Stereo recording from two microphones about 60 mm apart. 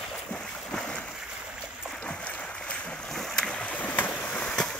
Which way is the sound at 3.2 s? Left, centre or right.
Centre.